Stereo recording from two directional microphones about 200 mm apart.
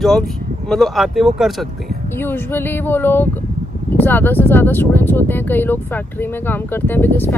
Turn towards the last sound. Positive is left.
turn(degrees=10)  # may be behind; listen again after turning